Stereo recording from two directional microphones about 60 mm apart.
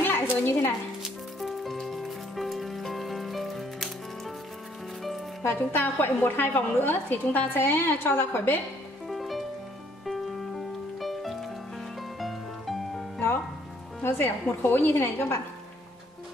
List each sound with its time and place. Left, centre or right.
0.0 s a sound: left
1.0 s music: centre
5.4 s a woman's voice: left
9.0 s music: centre
14.0 s a woman's voice: left
15.0 s a woman's voice: left